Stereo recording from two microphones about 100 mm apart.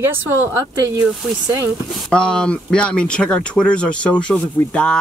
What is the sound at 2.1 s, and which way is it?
Speech, 10° left (ahead or behind).